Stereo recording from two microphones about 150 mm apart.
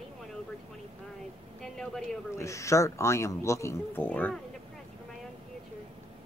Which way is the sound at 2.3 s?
20° left (ahead or behind).